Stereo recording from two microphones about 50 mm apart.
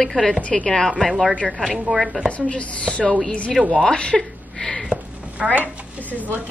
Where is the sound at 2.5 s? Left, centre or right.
Left.